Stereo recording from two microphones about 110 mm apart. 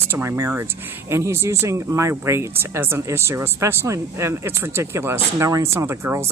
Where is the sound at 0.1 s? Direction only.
25° right (ahead or behind).